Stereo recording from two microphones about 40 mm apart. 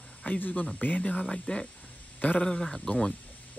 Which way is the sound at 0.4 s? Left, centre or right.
Left.